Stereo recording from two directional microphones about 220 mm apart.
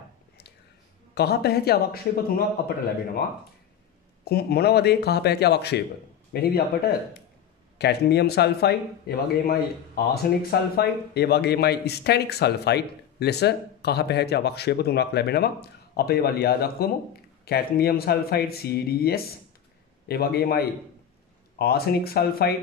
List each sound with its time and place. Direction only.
1.1 s speech: 45° left (ahead or behind)
4.2 s speech: 45° left (ahead or behind)